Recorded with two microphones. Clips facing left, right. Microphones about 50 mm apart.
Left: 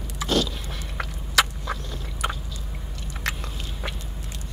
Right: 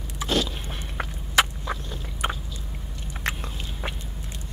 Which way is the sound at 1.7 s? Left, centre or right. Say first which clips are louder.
Even; centre.